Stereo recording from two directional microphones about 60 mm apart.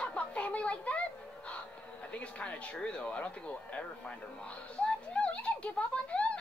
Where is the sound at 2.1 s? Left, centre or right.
Left.